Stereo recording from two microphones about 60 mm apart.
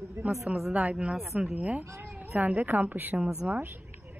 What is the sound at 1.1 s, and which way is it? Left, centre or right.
Speech, centre.